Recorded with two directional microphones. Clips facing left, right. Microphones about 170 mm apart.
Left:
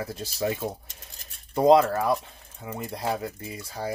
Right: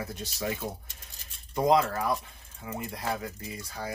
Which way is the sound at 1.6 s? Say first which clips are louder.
Left 6 dB; 25° left (ahead or behind).